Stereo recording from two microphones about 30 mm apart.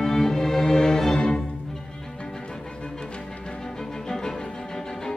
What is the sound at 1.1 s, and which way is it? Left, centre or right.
Music, left.